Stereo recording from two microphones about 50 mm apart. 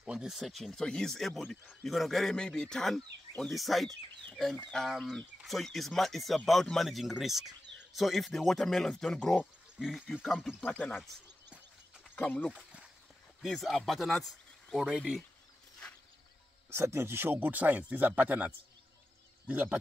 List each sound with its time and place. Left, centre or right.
0.0 s speech: centre
0.4 s speech: centre
0.7 s speech: centre
2.3 s speech: centre
9.8 s speech: centre
10.6 s speech: left
12.2 s speech: left
13.5 s speech: centre
14.8 s speech: centre
16.7 s speech: right
17.5 s speech: right